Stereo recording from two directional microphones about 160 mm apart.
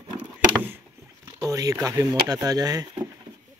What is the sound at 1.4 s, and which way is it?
Speech, 20° right (ahead or behind).